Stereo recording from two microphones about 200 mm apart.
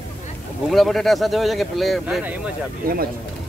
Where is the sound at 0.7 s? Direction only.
Centre (ahead or behind).